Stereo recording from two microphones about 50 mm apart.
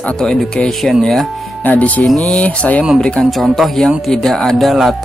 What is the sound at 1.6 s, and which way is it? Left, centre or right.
Speech, left.